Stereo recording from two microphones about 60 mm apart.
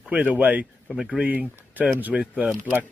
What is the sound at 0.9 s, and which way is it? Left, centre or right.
Speech, centre.